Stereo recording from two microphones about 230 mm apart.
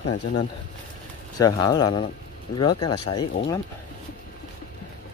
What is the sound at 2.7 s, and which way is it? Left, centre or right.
Speech, left.